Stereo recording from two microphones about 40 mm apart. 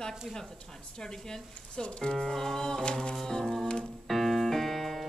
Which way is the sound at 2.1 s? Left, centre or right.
Centre.